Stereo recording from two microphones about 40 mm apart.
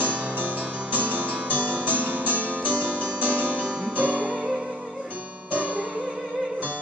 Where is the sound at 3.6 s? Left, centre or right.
Right.